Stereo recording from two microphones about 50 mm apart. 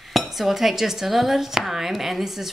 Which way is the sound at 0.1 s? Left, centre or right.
Centre.